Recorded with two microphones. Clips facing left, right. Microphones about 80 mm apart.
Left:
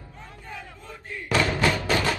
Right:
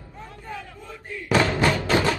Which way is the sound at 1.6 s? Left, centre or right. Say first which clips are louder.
Right 2 dB; right.